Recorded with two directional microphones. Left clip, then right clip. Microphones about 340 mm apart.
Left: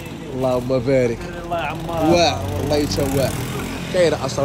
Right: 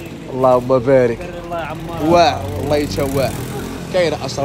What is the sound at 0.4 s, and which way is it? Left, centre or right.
Speech, right.